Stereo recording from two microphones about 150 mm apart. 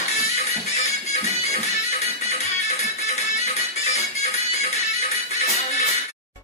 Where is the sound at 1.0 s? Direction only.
50° left (ahead or behind).